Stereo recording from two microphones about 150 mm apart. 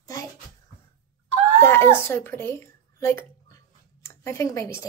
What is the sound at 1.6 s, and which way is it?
Speech, 15° left (ahead or behind).